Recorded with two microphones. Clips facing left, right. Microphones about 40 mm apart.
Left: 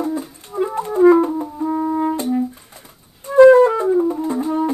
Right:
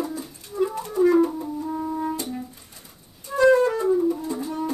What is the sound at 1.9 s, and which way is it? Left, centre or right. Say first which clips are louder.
Brass instrument: left 7 dB; left.